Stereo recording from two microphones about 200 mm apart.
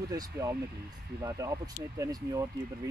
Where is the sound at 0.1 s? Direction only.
20° right (ahead or behind).